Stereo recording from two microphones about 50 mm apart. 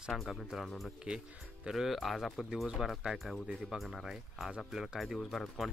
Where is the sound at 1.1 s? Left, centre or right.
Right.